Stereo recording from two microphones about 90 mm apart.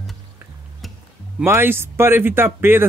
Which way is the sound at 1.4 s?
25° right (ahead or behind).